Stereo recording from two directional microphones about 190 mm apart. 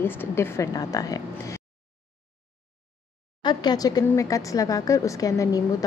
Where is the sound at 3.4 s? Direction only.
20° left (ahead or behind).